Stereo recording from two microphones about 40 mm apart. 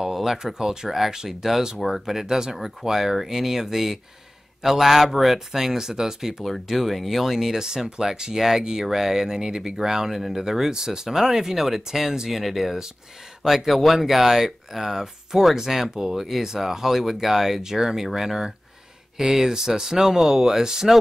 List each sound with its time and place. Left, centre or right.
0.0 s speech: centre
2.2 s speech: centre
6.7 s speech: centre